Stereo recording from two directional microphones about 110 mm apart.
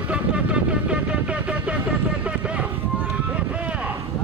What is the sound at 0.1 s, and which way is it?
Vehicle, 10° right (ahead or behind).